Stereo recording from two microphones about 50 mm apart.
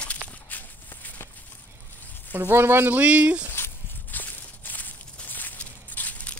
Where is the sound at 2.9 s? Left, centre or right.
Right.